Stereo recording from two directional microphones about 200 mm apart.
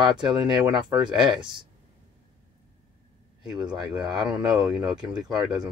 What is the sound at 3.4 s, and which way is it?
Speech, centre (ahead or behind).